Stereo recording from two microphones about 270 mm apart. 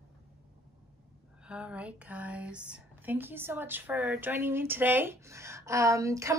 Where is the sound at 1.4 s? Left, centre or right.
Centre.